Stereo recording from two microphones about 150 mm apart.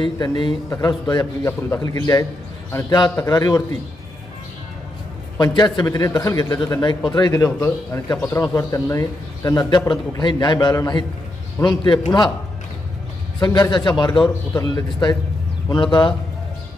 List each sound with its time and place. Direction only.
0.0 s a man's voice: 30° left (ahead or behind)
5.4 s a man's voice: 30° left (ahead or behind)
13.4 s a man's voice: 30° left (ahead or behind)